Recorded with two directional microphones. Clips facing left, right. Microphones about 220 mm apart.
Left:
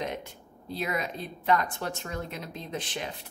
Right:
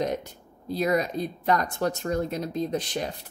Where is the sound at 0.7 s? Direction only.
40° right (ahead or behind).